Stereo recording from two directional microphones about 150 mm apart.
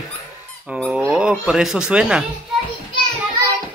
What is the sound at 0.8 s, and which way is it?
Dog, 5° right (ahead or behind).